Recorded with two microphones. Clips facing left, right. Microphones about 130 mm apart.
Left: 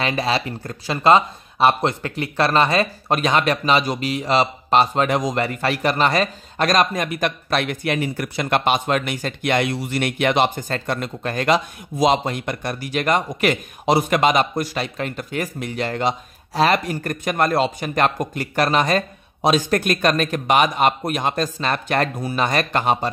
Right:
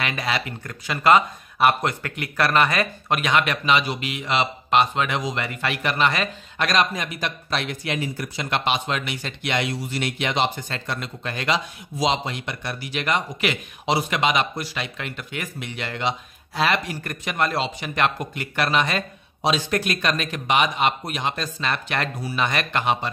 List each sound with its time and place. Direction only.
0.0 s speech: 30° left (ahead or behind)